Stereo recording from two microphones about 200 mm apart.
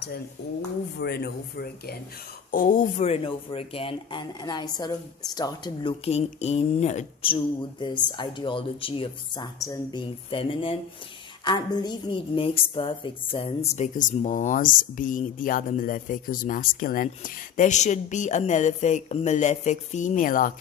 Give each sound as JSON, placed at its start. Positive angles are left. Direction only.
{"t": 0.4, "sound": "a woman's voice", "side_deg": 60}